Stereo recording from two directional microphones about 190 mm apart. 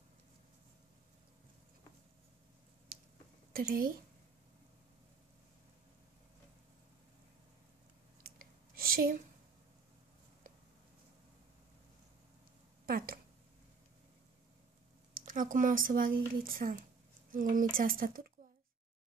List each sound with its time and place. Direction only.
3.5 s speech: 50° right (ahead or behind)
8.7 s a sound: 50° right (ahead or behind)
12.8 s speech: 50° right (ahead or behind)
15.1 s speech: 45° right (ahead or behind)